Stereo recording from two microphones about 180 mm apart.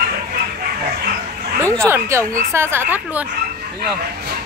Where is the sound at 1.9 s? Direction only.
15° right (ahead or behind).